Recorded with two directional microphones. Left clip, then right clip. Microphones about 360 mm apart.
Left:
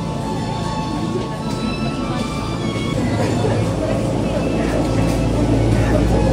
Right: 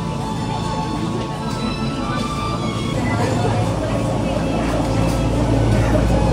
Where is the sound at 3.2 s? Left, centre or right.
Centre.